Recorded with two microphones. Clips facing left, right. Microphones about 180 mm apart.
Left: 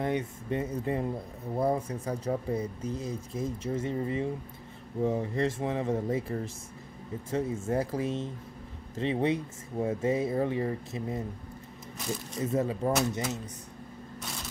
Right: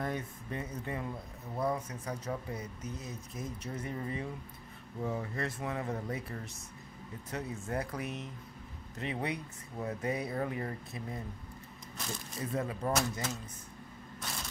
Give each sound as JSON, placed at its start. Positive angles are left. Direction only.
{"t": 0.0, "sound": "speech", "side_deg": 25}
{"t": 12.4, "sound": "speech", "side_deg": 25}